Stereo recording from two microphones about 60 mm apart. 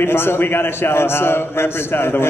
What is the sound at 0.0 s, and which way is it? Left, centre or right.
A man's voice, left.